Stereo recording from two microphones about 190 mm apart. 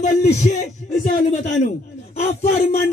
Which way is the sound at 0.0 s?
35° left (ahead or behind).